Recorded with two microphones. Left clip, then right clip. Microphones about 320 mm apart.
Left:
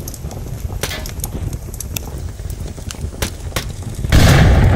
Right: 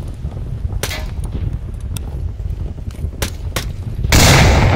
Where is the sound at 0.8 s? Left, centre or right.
Centre.